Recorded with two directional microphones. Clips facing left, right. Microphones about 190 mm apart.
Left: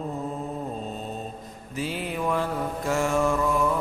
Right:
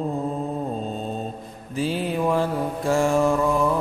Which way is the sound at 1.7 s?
30° right (ahead or behind).